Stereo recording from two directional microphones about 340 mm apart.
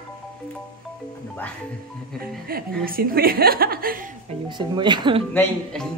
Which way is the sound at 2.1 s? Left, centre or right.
Right.